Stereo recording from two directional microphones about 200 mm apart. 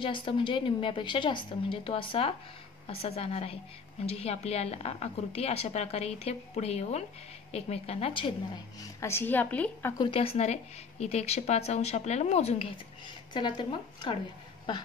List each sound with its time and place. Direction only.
0.0 s a woman's voice: 25° left (ahead or behind)
8.7 s a woman's voice: 15° left (ahead or behind)
10.1 s a woman's voice: 30° left (ahead or behind)